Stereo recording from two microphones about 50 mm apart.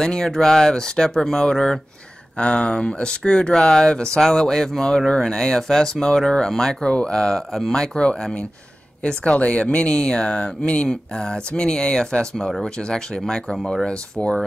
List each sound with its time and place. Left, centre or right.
0.0 s speech: centre